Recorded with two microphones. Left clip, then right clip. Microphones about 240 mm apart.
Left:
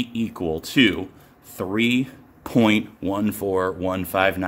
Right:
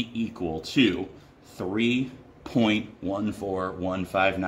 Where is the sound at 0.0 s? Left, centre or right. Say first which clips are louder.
Left 4 dB; left.